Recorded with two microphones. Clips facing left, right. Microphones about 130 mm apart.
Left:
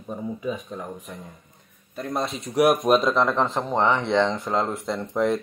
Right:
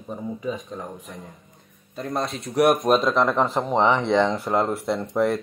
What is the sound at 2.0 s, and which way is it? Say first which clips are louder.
Speech: even; centre (ahead or behind).